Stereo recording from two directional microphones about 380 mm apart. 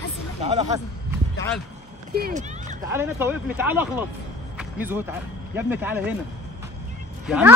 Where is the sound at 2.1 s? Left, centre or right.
Right.